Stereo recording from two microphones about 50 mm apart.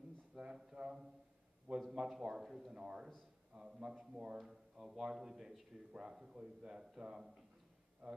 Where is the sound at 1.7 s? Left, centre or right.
Centre.